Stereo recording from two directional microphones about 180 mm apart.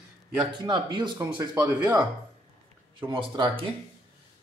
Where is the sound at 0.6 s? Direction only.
25° right (ahead or behind).